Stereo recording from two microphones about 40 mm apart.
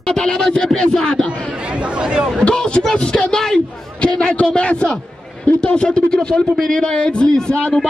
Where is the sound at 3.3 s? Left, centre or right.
Centre.